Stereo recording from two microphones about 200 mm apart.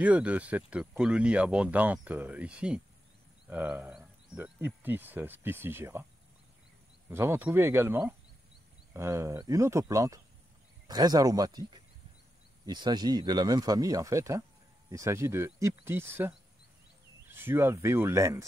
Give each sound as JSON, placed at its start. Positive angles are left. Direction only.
{"t": 0.0, "sound": "speech", "side_deg": -5}
{"t": 7.1, "sound": "speech", "side_deg": -10}